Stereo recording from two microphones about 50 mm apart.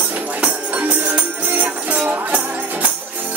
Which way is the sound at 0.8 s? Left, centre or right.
Right.